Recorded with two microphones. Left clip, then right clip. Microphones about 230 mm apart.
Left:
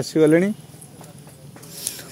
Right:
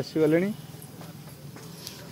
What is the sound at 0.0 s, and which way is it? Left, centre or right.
Speech, left.